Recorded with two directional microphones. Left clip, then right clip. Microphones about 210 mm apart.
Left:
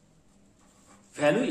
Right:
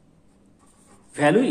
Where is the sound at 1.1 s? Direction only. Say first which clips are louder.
Right 6 dB; 30° right (ahead or behind).